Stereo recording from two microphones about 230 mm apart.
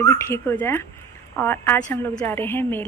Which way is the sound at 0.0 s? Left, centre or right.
Centre.